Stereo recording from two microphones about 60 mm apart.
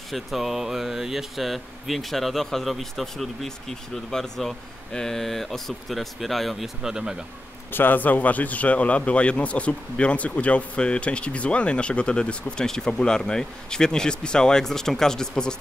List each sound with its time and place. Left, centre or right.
0.1 s speech: centre
7.7 s a man's voice: left; by 15.5 s centre